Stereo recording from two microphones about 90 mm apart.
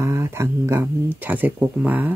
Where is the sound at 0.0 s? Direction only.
30° right (ahead or behind).